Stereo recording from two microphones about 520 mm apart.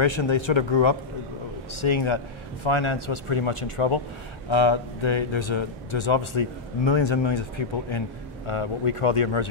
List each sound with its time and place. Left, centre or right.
0.0 s a man's voice: left
4.5 s speech: left
8.5 s a man's voice: left